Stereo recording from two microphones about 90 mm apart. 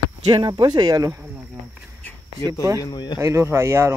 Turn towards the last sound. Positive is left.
turn(degrees=-30)  # may be behind; listen again after turning